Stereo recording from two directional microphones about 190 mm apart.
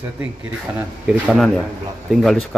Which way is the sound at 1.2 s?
Centre (ahead or behind).